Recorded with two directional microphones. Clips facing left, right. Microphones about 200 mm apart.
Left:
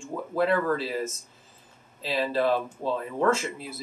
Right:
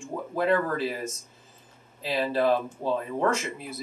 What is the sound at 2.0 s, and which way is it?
Speech, 15° right (ahead or behind).